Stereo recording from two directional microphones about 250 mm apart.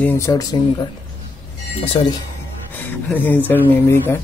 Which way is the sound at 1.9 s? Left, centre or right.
Centre.